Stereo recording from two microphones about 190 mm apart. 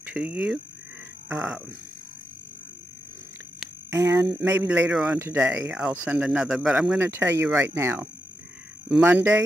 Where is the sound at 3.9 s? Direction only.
15° right (ahead or behind).